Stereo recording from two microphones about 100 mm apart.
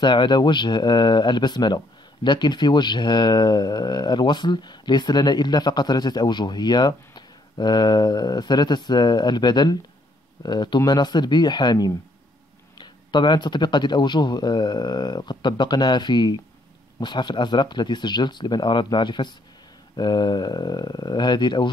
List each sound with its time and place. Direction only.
0.0 s speech: 50° left (ahead or behind)